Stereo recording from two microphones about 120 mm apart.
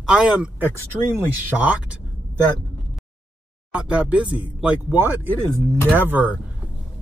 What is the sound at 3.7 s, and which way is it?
Speech, 10° right (ahead or behind).